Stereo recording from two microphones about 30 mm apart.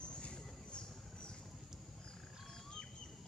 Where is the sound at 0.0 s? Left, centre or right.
Left.